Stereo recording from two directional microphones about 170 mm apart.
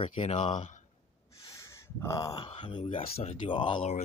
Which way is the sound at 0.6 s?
45° left (ahead or behind).